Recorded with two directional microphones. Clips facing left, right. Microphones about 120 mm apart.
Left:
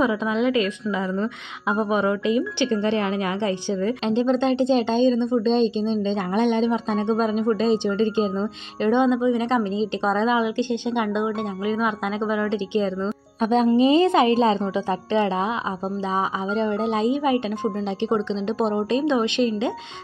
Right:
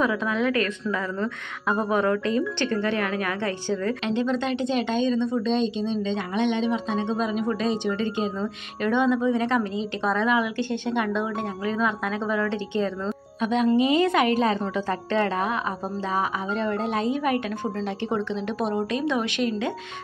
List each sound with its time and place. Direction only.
0.0 s a woman's voice: 20° left (ahead or behind)
4.0 s a woman's voice: 30° left (ahead or behind)
13.4 s a woman's voice: 35° left (ahead or behind)